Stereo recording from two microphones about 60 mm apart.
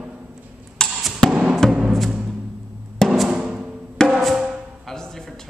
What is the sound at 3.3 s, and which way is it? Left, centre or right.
Music, centre.